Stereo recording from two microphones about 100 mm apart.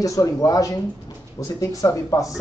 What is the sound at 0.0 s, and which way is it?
A man's voice, 35° left (ahead or behind).